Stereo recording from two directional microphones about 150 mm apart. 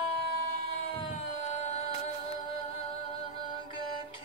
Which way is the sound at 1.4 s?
50° left (ahead or behind).